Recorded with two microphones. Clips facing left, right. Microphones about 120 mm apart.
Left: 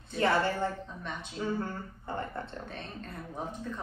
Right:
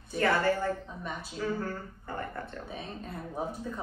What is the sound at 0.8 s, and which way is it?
Speech, 5° right (ahead or behind).